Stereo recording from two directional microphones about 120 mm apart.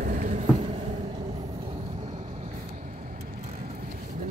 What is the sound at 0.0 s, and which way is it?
Vehicle, 80° right.